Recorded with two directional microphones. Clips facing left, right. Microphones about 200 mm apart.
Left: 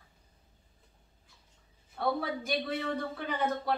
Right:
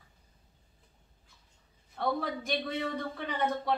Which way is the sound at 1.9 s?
Centre (ahead or behind).